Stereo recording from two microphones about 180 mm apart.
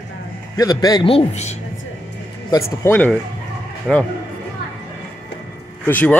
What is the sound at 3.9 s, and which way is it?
Speech, centre (ahead or behind).